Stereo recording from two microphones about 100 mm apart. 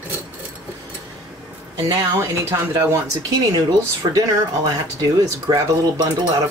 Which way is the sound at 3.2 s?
40° right (ahead or behind).